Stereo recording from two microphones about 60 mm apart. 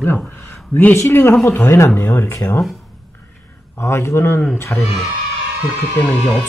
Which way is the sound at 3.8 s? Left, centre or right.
Left.